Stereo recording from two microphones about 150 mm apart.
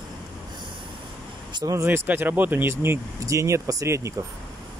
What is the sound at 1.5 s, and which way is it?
Speech, 25° right (ahead or behind).